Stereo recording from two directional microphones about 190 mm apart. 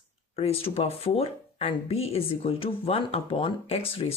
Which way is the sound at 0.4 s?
30° left (ahead or behind).